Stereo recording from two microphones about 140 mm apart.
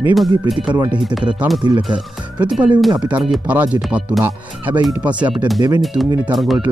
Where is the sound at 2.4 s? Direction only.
10° right (ahead or behind).